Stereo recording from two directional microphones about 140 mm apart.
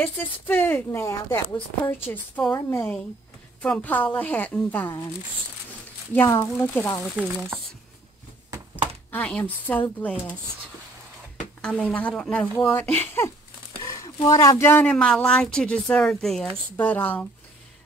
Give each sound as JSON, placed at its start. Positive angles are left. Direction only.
{"t": 0.0, "sound": "speech", "side_deg": 15}
{"t": 6.1, "sound": "speech", "side_deg": 15}
{"t": 7.2, "sound": "speech", "side_deg": -15}
{"t": 9.1, "sound": "speech", "side_deg": 10}
{"t": 11.6, "sound": "speech", "side_deg": 5}
{"t": 13.8, "sound": "speech", "side_deg": 25}